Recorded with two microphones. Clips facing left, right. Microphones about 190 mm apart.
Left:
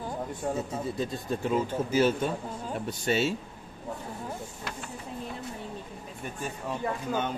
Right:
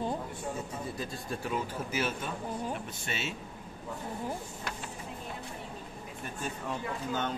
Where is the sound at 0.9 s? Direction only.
20° left (ahead or behind).